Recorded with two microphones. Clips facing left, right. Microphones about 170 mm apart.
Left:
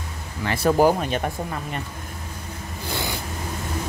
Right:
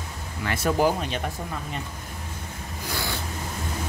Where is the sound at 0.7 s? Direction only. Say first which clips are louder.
Left 5 dB; 50° left (ahead or behind).